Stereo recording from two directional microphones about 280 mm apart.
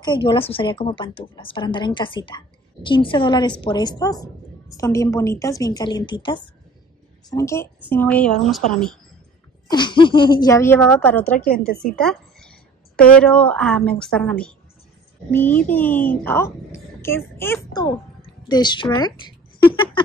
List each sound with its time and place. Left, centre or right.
0.0 s a woman's voice: centre
9.7 s a woman's voice: centre